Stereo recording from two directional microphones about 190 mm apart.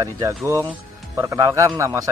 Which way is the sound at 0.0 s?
15° right (ahead or behind).